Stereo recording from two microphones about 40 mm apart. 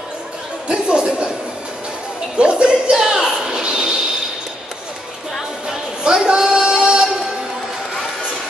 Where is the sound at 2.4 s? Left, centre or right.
Right.